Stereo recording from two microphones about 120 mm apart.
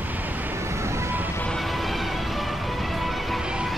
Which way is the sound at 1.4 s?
5° left (ahead or behind).